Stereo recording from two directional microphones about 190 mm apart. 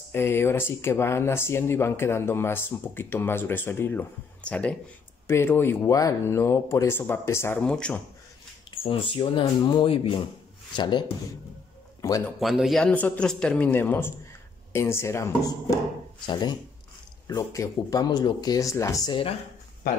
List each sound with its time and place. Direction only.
0.1 s speech: 10° left (ahead or behind)
8.8 s speech: 25° left (ahead or behind)
12.4 s speech: centre (ahead or behind); by 19.3 s 25° left (ahead or behind)